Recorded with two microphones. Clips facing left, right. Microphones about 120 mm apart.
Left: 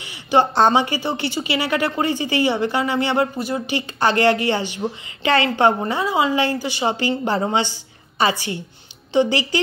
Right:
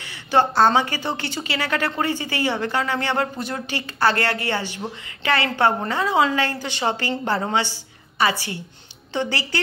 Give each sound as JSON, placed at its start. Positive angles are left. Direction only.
{"t": 0.0, "sound": "a woman's voice", "side_deg": 15}